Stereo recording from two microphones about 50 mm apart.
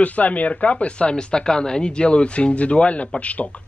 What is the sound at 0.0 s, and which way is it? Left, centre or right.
Speech, left.